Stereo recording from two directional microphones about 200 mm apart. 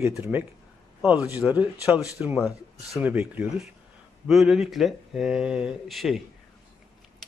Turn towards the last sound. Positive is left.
turn(degrees=0)  # may be behind; listen again after turning